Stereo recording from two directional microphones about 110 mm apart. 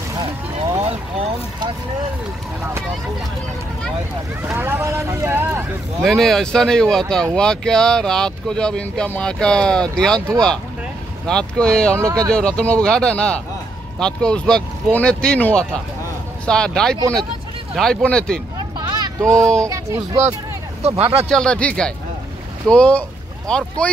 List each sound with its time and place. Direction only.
4.4 s speech: 20° right (ahead or behind)
6.0 s speech: centre (ahead or behind)
18.8 s a sound: 40° right (ahead or behind)
19.2 s speech: 25° right (ahead or behind)
20.8 s speech: 65° right (ahead or behind)
21.3 s speech: 5° left (ahead or behind)